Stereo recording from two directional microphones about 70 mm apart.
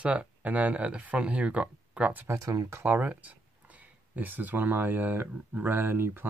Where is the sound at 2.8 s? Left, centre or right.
Right.